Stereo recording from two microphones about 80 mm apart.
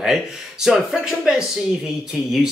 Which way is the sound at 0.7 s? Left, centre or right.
Centre.